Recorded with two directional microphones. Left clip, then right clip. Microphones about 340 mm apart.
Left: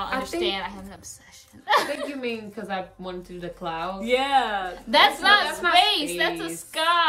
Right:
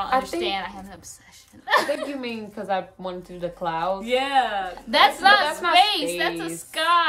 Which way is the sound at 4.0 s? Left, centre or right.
Centre.